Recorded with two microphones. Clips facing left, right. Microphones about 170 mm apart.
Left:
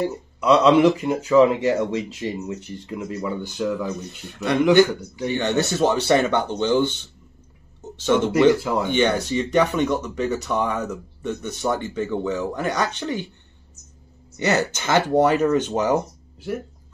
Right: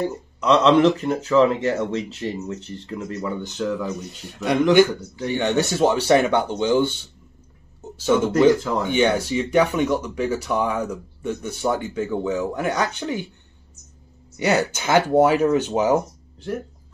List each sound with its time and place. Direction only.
0.0 s speech: 10° left (ahead or behind)
4.2 s speech: 10° right (ahead or behind)
5.0 s speech: 15° left (ahead or behind)
5.3 s speech: 15° right (ahead or behind)
8.5 s speech: 10° left (ahead or behind)
8.8 s speech: 10° right (ahead or behind)
14.3 s speech: 10° right (ahead or behind)
16.3 s speech: 5° left (ahead or behind)